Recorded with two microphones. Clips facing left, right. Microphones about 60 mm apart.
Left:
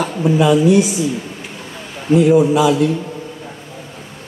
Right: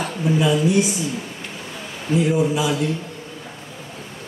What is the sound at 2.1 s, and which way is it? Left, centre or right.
Speech, left.